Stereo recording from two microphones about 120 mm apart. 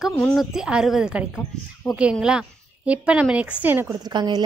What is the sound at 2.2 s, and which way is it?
Speech, 10° right (ahead or behind).